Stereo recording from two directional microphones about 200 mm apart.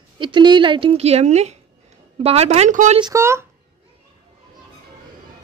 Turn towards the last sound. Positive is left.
turn(degrees=-15)  # may be behind; listen again after turning